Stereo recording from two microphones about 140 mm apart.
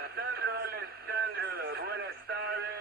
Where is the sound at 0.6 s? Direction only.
90° right.